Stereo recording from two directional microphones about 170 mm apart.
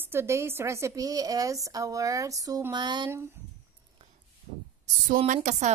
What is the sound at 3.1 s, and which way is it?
Speech, 15° right (ahead or behind).